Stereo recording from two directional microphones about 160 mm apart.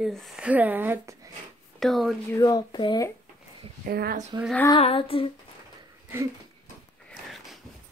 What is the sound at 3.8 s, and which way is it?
Speech, 75° right (ahead or behind).